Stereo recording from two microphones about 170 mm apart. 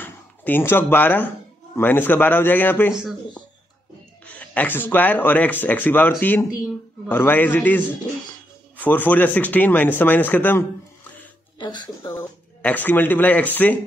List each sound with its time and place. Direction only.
0.0 s speech: 10° left (ahead or behind)
2.9 s speech: 5° right (ahead or behind)
4.4 s speech: 10° left (ahead or behind)
11.6 s speech: 25° left (ahead or behind)
12.1 s speech: 10° left (ahead or behind)